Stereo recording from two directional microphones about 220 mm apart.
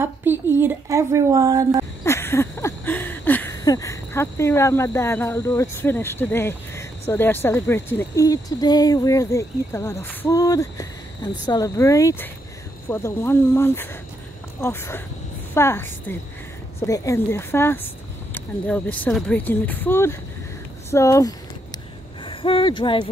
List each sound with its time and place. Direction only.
0.0 s a woman's voice: 10° right (ahead or behind)
2.0 s a sound: 10° left (ahead or behind)
11.4 s speech: 15° left (ahead or behind)